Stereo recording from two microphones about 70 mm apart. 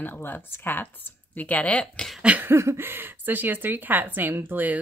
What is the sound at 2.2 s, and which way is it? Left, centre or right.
Speech, right.